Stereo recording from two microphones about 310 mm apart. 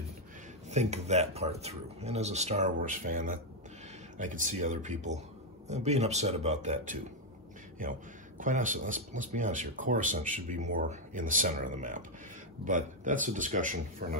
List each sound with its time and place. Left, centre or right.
0.7 s a man's voice: right